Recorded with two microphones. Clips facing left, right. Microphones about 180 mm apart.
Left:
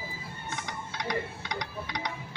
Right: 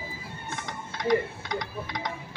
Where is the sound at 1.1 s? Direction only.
5° right (ahead or behind).